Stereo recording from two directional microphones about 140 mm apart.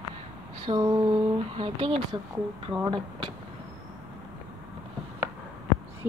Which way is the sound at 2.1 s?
30° right (ahead or behind).